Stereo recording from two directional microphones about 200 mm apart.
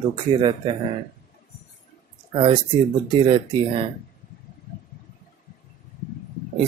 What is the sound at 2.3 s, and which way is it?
Speech, 25° right (ahead or behind).